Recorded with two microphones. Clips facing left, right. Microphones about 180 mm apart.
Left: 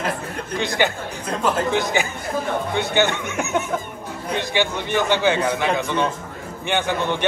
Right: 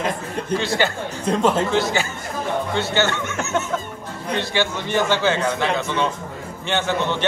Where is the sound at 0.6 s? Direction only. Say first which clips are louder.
Left 2 dB; 15° left (ahead or behind).